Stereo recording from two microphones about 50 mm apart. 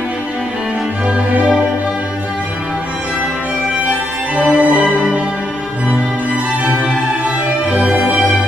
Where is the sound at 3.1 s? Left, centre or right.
Right.